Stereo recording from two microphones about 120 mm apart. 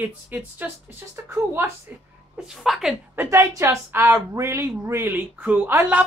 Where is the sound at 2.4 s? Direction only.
Centre (ahead or behind).